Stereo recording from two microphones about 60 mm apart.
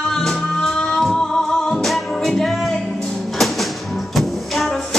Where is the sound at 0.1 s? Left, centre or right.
Centre.